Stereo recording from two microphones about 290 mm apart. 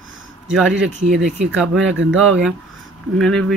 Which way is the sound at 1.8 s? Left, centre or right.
Right.